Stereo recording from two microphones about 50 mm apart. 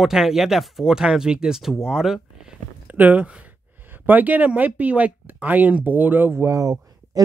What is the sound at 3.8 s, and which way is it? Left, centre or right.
Speech, right.